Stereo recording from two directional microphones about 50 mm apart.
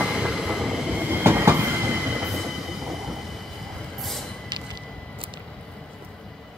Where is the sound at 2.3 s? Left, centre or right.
Centre.